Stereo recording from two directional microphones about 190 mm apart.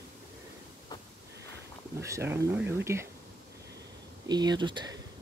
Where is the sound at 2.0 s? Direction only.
15° right (ahead or behind).